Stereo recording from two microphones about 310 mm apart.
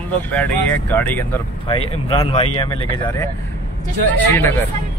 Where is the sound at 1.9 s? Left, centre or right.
Centre.